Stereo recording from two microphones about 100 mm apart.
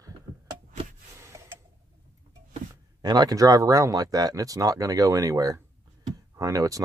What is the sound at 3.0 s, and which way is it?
Speech, 45° right (ahead or behind).